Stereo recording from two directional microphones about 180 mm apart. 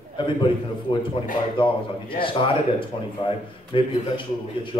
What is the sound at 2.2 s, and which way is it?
Speech, 30° left (ahead or behind).